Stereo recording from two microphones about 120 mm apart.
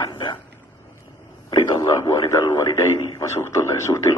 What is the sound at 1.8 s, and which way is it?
A man's voice, 20° left (ahead or behind).